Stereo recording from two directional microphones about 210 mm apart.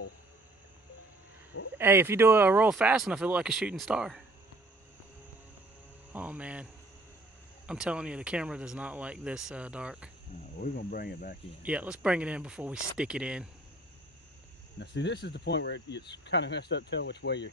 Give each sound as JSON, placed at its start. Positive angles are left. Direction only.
{"t": 1.8, "sound": "speech", "side_deg": -10}
{"t": 6.1, "sound": "cricket", "side_deg": -5}
{"t": 7.6, "sound": "speech", "side_deg": -5}
{"t": 10.6, "sound": "speech", "side_deg": 45}
{"t": 11.6, "sound": "speech", "side_deg": -5}
{"t": 14.8, "sound": "speech", "side_deg": 55}